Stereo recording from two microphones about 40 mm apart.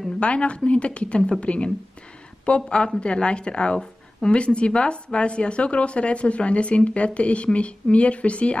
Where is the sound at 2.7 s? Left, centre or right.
Left.